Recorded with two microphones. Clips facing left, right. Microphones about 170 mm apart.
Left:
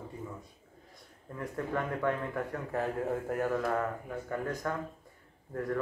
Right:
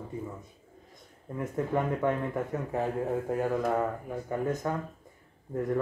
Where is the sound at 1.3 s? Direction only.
20° right (ahead or behind).